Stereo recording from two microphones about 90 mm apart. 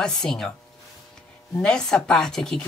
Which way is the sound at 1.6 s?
10° left (ahead or behind).